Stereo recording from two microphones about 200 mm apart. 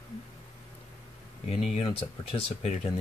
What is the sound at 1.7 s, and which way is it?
Speech, 30° left (ahead or behind).